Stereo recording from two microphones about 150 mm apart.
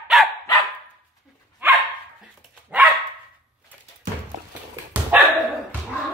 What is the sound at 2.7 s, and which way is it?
Dog, 10° right (ahead or behind).